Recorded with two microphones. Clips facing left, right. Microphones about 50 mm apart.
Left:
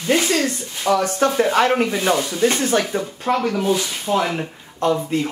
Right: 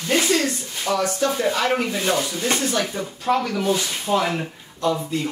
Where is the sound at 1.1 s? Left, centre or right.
Left.